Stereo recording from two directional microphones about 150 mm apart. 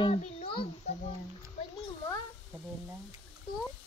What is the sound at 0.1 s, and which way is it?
Speech, 45° left (ahead or behind).